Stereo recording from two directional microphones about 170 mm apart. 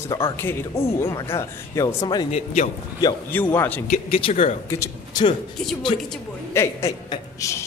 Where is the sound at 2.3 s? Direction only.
45° left (ahead or behind).